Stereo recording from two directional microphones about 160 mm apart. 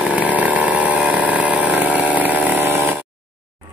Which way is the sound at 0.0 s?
10° right (ahead or behind).